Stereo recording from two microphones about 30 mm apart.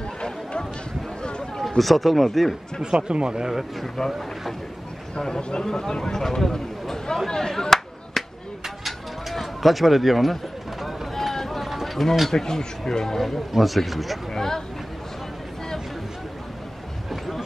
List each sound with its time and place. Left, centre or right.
0.2 s a sound: left
1.8 s speech: centre
2.8 s speech: right
3.8 s speech: centre
5.4 s speech: left
5.7 s speech: centre
7.2 s a sound: left
8.6 s a sound: centre
11.1 s run: centre
11.6 s a sound: centre
12.3 s speech: centre
13.5 s speech: centre
14.3 s speech: centre